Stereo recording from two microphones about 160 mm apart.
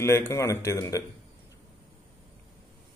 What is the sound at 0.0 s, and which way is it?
A man's voice, 15° left (ahead or behind).